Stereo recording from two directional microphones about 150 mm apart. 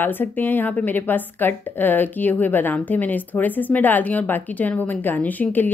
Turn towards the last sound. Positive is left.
turn(degrees=10)  # may be behind; listen again after turning